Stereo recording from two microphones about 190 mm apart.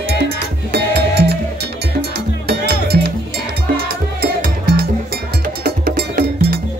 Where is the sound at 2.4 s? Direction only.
55° right (ahead or behind).